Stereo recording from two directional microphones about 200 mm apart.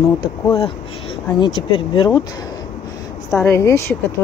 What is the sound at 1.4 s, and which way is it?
Speech, 25° left (ahead or behind).